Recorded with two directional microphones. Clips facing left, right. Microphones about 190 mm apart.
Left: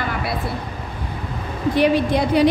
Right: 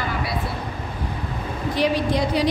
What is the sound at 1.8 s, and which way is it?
Speech, 55° left (ahead or behind).